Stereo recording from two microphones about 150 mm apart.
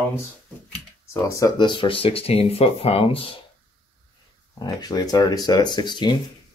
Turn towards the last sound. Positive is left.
turn(degrees=30)  # may be behind; listen again after turning